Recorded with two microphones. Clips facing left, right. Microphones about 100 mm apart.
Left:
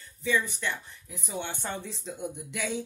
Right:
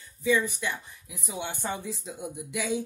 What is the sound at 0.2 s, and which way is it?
Speech, 10° right (ahead or behind).